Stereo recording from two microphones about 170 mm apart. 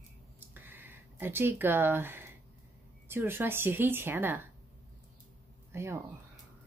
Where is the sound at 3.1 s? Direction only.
15° right (ahead or behind).